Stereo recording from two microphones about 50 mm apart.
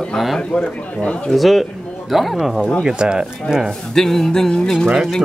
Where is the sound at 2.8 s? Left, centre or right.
Centre.